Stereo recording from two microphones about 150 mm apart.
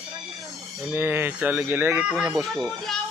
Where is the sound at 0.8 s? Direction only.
10° right (ahead or behind).